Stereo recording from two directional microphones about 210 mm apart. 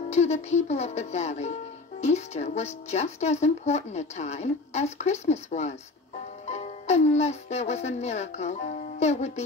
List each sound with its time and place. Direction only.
0.1 s speech: 30° left (ahead or behind)